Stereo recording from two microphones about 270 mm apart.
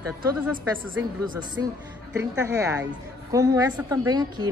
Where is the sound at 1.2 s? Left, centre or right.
Centre.